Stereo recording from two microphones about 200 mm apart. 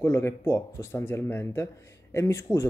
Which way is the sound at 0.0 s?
10° left (ahead or behind).